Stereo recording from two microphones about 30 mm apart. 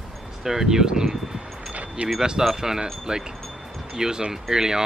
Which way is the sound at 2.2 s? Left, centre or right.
Right.